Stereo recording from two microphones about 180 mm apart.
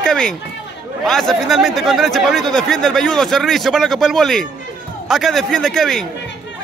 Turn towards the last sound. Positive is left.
turn(degrees=5)  # may be behind; listen again after turning